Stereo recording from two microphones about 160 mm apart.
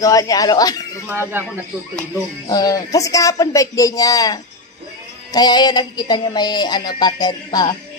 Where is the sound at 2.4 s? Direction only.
25° left (ahead or behind).